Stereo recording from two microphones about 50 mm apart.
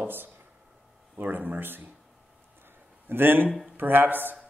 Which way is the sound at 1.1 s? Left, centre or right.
Right.